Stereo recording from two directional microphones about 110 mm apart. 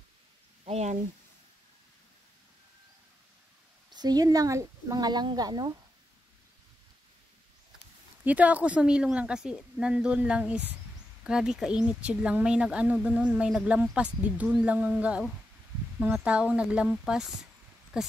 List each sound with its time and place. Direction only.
0.7 s speech: 75° right (ahead or behind)
3.9 s speech: 40° right (ahead or behind)
8.2 s speech: 15° right (ahead or behind)